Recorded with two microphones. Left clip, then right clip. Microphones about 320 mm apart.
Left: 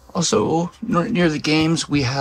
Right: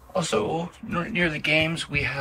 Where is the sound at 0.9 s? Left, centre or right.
Centre.